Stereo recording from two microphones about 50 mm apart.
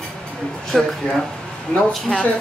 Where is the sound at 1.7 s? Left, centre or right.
Left.